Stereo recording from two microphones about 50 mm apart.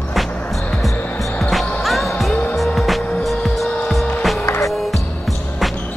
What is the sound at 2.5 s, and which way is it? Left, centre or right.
Music, centre.